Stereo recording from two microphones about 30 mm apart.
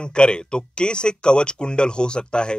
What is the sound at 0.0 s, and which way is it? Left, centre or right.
Speech, left.